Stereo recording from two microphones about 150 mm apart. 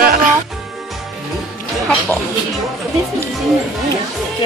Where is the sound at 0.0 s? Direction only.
70° right (ahead or behind).